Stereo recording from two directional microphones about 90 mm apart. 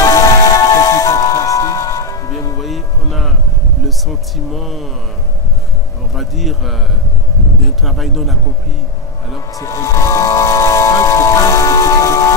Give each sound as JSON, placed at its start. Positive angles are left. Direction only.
{"t": 0.0, "sound": "music", "side_deg": 35}
{"t": 2.6, "sound": "music", "side_deg": 0}
{"t": 4.5, "sound": "a sound", "side_deg": 0}
{"t": 6.1, "sound": "a sound", "side_deg": 0}
{"t": 7.6, "sound": "speech", "side_deg": 0}
{"t": 9.6, "sound": "music", "side_deg": 35}